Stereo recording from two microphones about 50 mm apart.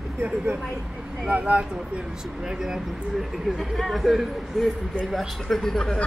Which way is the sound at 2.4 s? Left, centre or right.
Centre.